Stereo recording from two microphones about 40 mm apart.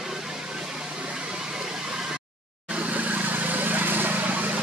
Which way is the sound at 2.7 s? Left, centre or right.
Right.